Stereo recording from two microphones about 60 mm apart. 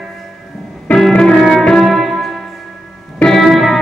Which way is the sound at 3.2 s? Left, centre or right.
Centre.